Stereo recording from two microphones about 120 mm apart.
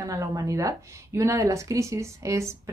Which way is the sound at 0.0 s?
25° right (ahead or behind).